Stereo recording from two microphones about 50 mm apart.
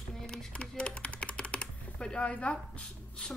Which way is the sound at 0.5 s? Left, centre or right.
Centre.